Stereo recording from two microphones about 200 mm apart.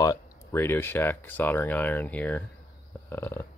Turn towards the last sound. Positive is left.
turn(degrees=10)  # may be behind; listen again after turning